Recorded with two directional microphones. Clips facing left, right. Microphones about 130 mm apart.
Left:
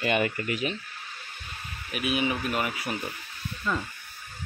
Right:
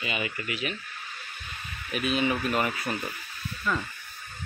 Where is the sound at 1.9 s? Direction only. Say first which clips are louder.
Right 1 dB; 10° left (ahead or behind).